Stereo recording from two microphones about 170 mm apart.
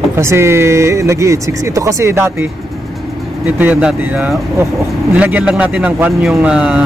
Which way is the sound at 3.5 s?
10° right (ahead or behind).